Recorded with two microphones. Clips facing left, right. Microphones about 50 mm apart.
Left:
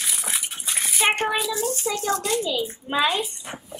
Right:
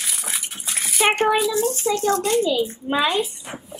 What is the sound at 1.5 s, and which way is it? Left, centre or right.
Speech, right.